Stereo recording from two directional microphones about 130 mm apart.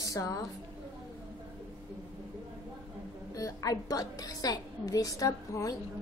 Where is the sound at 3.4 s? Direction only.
25° left (ahead or behind).